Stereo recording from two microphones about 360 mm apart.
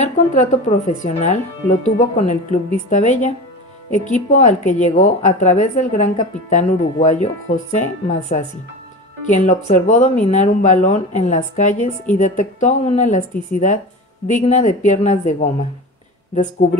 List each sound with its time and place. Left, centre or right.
0.0 s speech: centre
14.2 s speech: centre